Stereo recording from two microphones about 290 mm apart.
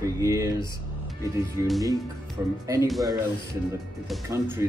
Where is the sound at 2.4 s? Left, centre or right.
Centre.